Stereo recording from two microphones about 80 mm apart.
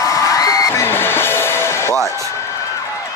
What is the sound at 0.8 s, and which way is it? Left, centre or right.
Music, left.